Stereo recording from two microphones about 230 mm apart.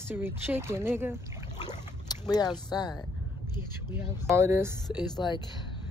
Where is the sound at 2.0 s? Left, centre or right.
Centre.